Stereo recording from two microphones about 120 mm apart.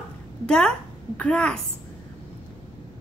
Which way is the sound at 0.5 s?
5° left (ahead or behind).